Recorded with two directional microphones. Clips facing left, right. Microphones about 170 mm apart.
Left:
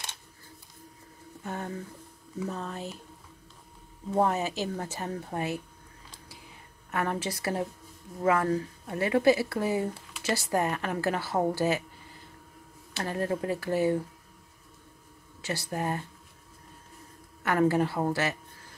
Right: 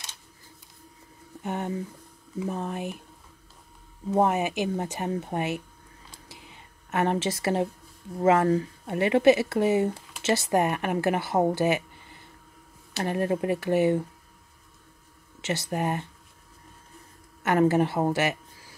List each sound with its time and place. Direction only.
1.4 s speech: 20° right (ahead or behind)
4.1 s speech: 15° right (ahead or behind)
6.9 s speech: 25° right (ahead or behind)
13.0 s speech: 20° right (ahead or behind)
15.4 s speech: 20° right (ahead or behind)
17.4 s speech: 20° right (ahead or behind)